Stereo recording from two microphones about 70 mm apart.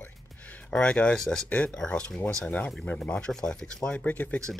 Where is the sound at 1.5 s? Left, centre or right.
Centre.